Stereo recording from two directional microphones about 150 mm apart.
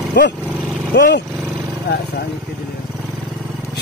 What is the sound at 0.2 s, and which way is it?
Speech, 90° left.